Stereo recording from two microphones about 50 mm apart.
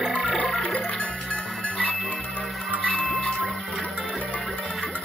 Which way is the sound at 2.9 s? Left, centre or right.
Centre.